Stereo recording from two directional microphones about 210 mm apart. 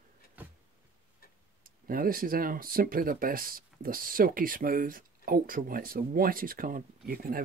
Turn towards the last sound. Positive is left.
turn(degrees=-45)  # may be behind; listen again after turning